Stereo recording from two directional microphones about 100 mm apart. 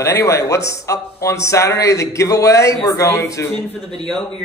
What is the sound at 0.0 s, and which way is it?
A man's voice, 30° left (ahead or behind).